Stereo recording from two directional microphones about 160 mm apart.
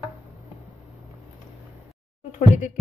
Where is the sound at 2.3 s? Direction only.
50° left (ahead or behind).